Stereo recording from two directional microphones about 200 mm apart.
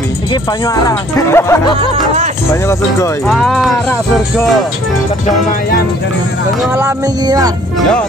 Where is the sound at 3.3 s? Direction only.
Centre (ahead or behind).